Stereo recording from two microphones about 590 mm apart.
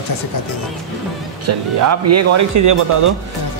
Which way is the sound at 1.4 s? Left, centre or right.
Right.